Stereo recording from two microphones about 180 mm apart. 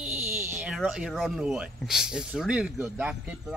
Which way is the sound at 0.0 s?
5° right (ahead or behind).